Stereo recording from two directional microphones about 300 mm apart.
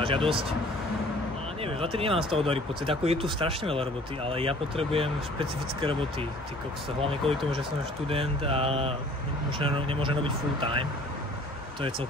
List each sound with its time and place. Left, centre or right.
0.0 s speech: centre
1.6 s speech: centre
7.0 s mantra: centre
9.6 s speech: centre